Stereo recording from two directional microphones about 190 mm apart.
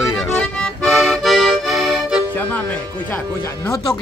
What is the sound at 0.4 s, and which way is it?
Accordion, 5° left (ahead or behind).